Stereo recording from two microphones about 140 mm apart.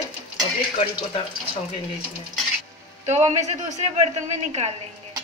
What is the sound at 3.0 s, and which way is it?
Speech, 55° right (ahead or behind).